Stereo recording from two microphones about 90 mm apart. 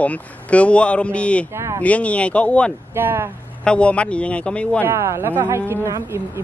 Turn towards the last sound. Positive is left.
turn(degrees=-30)  # may be behind; listen again after turning